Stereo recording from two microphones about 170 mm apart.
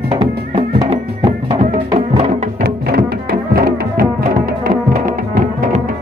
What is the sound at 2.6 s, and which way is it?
Music, 65° right (ahead or behind).